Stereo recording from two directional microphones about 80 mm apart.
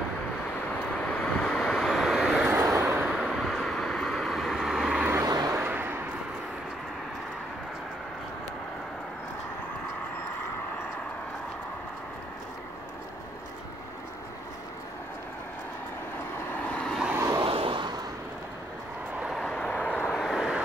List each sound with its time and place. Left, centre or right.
1.0 s vehicle: centre
3.3 s vehicle: centre
5.2 s vehicle: right
5.5 s a sound: right
16.5 s vehicle: centre
17.1 s vehicle: right
17.4 s a sound: right
19.4 s vehicle: centre
20.1 s vehicle: centre